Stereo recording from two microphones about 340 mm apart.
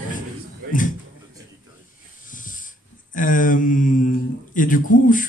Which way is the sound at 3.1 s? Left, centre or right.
Left.